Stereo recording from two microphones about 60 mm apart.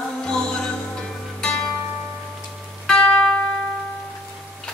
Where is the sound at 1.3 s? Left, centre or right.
Centre.